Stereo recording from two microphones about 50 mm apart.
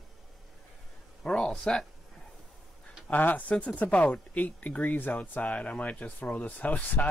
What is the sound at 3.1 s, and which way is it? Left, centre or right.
Speech, left.